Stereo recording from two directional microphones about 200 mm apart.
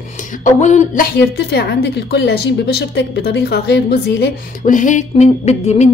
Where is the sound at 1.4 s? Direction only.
55° left (ahead or behind).